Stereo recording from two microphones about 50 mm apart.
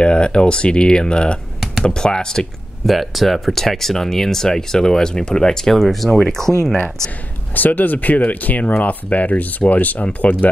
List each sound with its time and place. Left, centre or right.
0.0 s speech: left
2.9 s speech: centre
7.5 s speech: left